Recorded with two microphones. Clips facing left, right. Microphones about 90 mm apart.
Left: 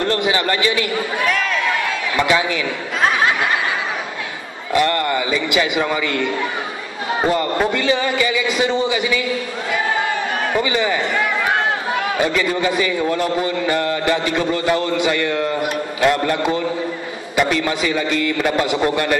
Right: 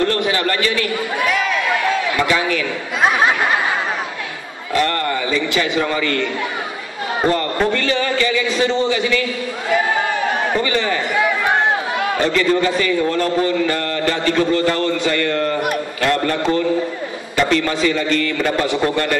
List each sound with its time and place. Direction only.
0.0 s a man's voice: 20° left (ahead or behind)
1.2 s a sound: 5° right (ahead or behind)
2.1 s a man's voice: 15° left (ahead or behind)
3.0 s a sound: 15° right (ahead or behind)
4.7 s a man's voice: 15° left (ahead or behind)
7.2 s a man's voice: 10° left (ahead or behind)
10.6 s a man's voice: 10° left (ahead or behind)
12.2 s a man's voice: 10° left (ahead or behind)